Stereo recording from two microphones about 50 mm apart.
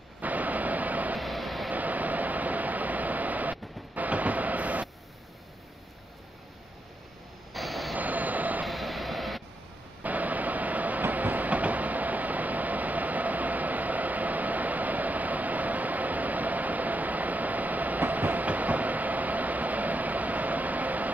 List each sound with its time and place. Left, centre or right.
0.2 s vehicle: right
1.2 s vehicle: centre
1.7 s a sound: right
7.5 s vehicle: centre
7.9 s train: right
8.6 s train: centre
10.0 s train: right